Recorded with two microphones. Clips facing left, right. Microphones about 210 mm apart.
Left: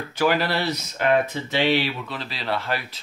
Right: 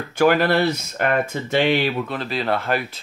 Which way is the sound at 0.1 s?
50° right (ahead or behind).